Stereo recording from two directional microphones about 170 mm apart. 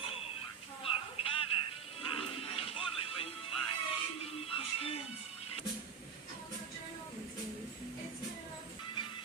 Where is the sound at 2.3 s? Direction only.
35° left (ahead or behind).